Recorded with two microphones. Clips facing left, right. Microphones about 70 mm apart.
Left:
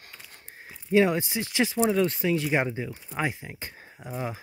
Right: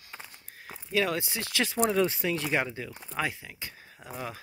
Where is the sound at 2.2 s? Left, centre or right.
Centre.